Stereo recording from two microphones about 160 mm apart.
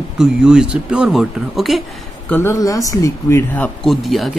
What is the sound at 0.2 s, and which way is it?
Speech, 5° right (ahead or behind).